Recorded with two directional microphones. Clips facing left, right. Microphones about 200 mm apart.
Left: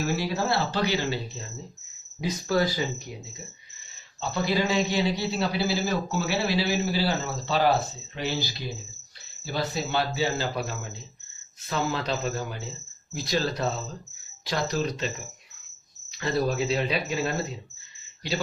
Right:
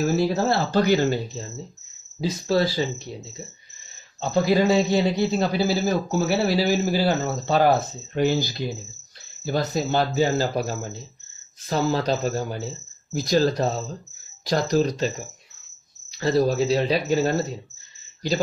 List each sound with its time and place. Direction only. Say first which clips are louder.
0.0 s a man's voice: right 6 dB; 40° right (ahead or behind)
2.1 s speech: right 3 dB; 30° right (ahead or behind)
4.2 s a man's voice: right 6 dB; 45° right (ahead or behind)